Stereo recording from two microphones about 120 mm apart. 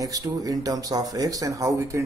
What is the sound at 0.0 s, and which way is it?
Speech, 30° right (ahead or behind).